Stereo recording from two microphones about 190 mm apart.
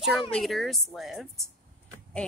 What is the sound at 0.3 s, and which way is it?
A woman's voice, centre (ahead or behind).